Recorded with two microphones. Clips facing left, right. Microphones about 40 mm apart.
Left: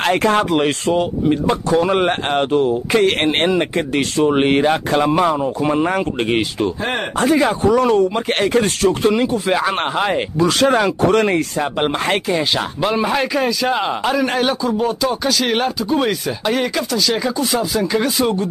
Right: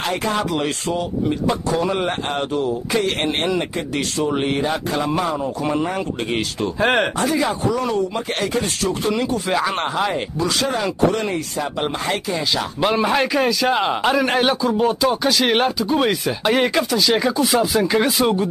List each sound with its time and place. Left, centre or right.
0.0 s speech: left
6.8 s speech: right
7.2 s speech: left
9.5 s speech: left
10.6 s speech: left
12.8 s a man's voice: centre